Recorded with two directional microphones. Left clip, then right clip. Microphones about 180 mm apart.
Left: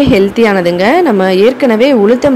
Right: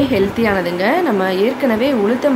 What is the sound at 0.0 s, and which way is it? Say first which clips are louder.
A woman's voice: left 7 dB; 40° left (ahead or behind).